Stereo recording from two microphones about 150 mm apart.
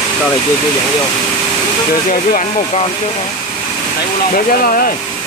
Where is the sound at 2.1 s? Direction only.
55° left (ahead or behind).